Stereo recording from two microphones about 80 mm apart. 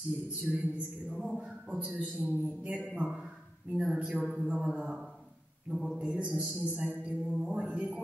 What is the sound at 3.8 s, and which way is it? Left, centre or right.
Speech, centre.